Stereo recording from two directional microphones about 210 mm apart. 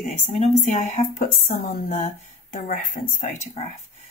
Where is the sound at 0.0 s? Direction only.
30° left (ahead or behind).